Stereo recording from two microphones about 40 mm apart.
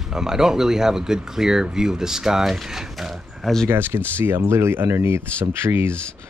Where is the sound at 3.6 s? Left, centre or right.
Right.